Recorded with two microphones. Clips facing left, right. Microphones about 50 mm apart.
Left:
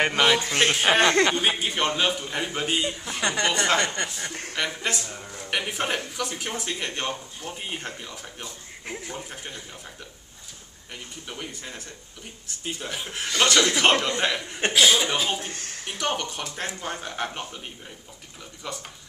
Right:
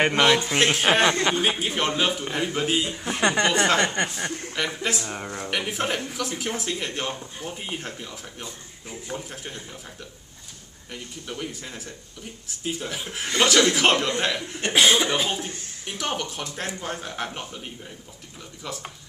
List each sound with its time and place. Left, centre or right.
0.6 s speech: centre
3.0 s a woman's voice: right
3.5 s speech: centre
3.8 s a woman's voice: right
4.7 s speech: centre
5.0 s speech: right
5.5 s speech: centre
10.9 s speech: centre
14.7 s a woman's voice: right
15.0 s speech: centre
15.5 s speech: left
16.0 s speech: centre